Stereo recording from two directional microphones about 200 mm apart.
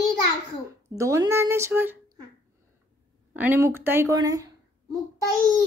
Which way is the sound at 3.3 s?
10° right (ahead or behind).